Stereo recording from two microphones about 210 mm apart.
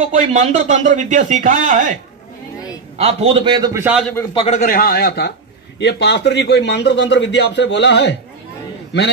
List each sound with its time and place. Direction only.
0.0 s a man's voice: 35° right (ahead or behind)
3.0 s a man's voice: 30° right (ahead or behind); by 4.0 s 10° right (ahead or behind)
4.1 s a man's voice: 15° left (ahead or behind)
4.6 s a man's voice: 45° left (ahead or behind)